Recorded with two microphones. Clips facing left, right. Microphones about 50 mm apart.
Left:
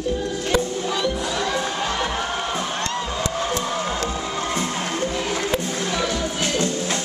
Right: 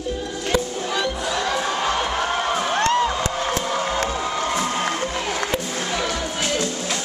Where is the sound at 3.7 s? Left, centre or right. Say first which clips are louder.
Right 2 dB; right.